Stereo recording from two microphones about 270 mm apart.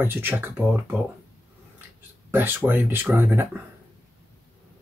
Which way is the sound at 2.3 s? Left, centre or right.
Centre.